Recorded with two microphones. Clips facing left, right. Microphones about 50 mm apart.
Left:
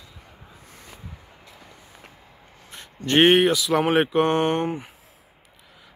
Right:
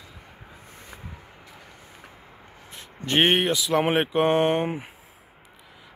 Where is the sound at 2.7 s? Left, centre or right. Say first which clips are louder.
Left 4 dB; centre.